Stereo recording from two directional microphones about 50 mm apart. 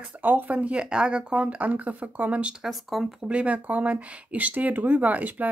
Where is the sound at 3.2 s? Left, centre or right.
Right.